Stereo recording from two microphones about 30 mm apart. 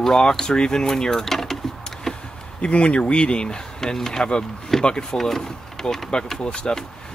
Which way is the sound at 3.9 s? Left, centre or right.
Centre.